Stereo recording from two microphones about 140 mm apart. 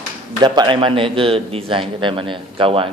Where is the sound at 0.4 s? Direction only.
35° right (ahead or behind).